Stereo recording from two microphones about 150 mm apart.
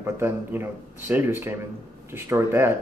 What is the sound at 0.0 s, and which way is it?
Speech, 15° right (ahead or behind).